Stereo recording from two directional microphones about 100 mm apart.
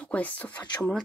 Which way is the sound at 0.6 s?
45° left (ahead or behind).